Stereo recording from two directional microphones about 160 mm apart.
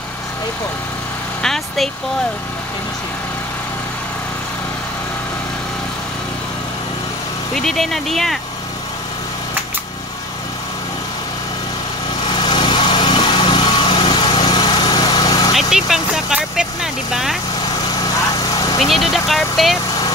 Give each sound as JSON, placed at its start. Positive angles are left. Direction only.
{"t": 1.4, "sound": "vehicle", "side_deg": 5}
{"t": 7.5, "sound": "speech", "side_deg": 0}
{"t": 12.4, "sound": "vehicle", "side_deg": 30}
{"t": 15.5, "sound": "vehicle", "side_deg": -5}
{"t": 18.4, "sound": "vehicle", "side_deg": 25}
{"t": 18.8, "sound": "vehicle", "side_deg": 0}